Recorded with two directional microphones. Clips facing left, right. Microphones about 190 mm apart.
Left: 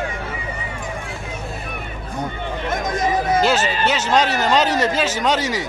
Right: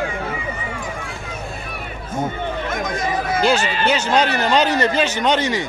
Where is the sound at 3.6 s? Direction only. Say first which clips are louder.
Left 1 dB; 40° left (ahead or behind).